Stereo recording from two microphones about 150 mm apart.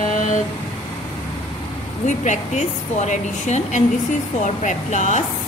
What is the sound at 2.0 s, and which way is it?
A woman's voice, 55° left (ahead or behind).